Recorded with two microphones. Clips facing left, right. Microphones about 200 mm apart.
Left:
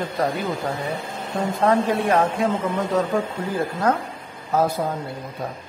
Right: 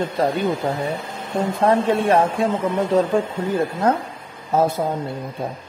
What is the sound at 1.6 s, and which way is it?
A man's voice, 25° right (ahead or behind).